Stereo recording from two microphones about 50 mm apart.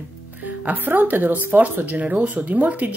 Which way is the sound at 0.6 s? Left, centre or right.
Right.